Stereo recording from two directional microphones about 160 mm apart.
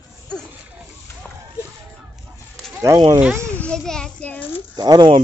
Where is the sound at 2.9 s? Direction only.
25° right (ahead or behind).